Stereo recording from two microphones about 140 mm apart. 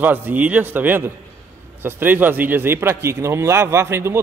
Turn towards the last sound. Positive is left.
turn(degrees=-20)  # may be behind; listen again after turning